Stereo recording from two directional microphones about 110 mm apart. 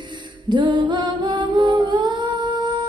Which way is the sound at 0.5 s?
45° right (ahead or behind).